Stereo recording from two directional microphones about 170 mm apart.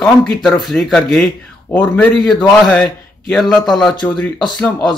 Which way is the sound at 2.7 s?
5° left (ahead or behind).